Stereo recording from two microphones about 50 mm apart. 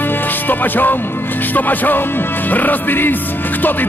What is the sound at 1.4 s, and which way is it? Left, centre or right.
Speech, left.